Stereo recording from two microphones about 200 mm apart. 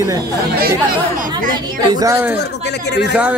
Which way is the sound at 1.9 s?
15° right (ahead or behind).